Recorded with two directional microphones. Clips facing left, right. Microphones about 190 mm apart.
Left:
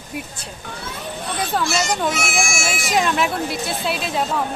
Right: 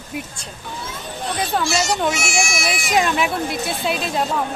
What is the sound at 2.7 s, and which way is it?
Speech, centre (ahead or behind).